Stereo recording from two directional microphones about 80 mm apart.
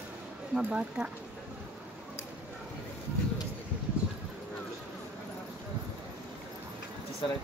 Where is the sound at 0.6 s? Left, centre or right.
Centre.